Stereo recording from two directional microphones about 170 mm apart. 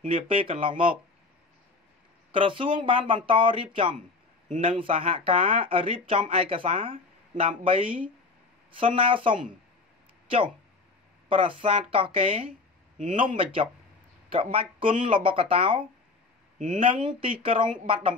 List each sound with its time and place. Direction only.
0.1 s speech: 35° right (ahead or behind)
2.3 s speech: 30° right (ahead or behind)
12.9 s a man's voice: 50° right (ahead or behind)
13.4 s speech: 30° right (ahead or behind)
16.5 s speech: 50° right (ahead or behind)
16.8 s speech: 30° right (ahead or behind)